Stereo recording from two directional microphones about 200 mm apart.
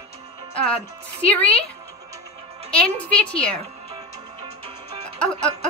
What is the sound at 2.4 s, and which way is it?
Music, 30° right (ahead or behind).